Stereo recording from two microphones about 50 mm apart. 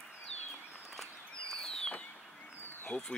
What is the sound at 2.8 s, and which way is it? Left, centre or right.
Speech, left.